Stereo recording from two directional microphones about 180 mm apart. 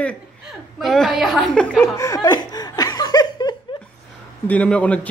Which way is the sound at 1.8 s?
15° left (ahead or behind).